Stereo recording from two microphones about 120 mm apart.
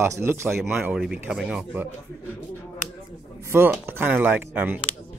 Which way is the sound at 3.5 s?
20° right (ahead or behind).